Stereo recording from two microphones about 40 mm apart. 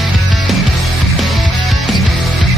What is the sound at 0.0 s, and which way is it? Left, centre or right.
Music, centre.